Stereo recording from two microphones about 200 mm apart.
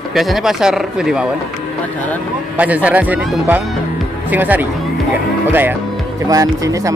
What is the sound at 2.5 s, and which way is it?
Speech, 5° right (ahead or behind).